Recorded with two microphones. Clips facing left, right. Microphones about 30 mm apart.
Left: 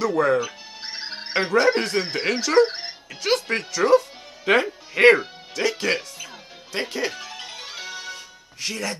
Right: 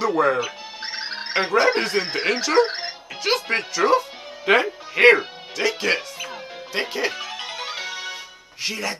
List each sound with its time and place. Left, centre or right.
0.0 s speech: centre
0.4 s music: centre
1.3 s speech: centre
6.2 s music: centre
8.6 s speech: centre